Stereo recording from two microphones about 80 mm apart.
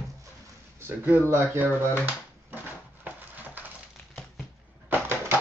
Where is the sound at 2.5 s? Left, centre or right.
Right.